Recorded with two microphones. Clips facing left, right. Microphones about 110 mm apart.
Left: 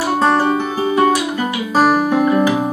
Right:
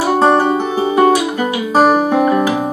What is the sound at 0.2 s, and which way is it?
Music, 25° right (ahead or behind).